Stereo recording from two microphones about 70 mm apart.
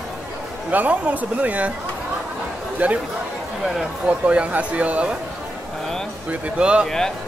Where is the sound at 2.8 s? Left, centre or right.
Right.